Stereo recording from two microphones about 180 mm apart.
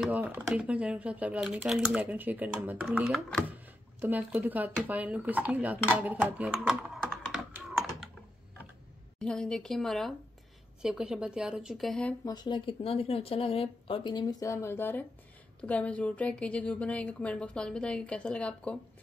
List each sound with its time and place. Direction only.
0.0 s speech: 10° right (ahead or behind)
9.2 s a woman's voice: 5° left (ahead or behind)
12.3 s speech: 25° left (ahead or behind); by 18.8 s 5° left (ahead or behind)